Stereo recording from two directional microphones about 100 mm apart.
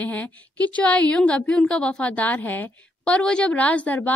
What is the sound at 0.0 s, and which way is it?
A woman's voice, 15° left (ahead or behind).